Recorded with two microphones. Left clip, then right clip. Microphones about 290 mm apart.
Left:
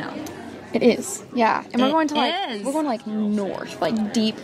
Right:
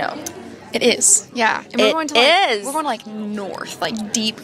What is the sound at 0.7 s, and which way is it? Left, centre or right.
Speech, right.